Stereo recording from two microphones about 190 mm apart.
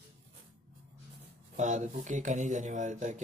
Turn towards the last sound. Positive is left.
turn(degrees=-40)  # may be behind; listen again after turning